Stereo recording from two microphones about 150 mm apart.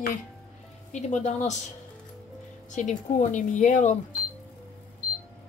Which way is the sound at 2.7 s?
55° left (ahead or behind).